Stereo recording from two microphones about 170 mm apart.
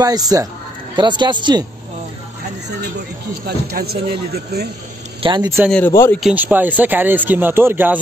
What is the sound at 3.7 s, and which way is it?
Speech, 65° right (ahead or behind).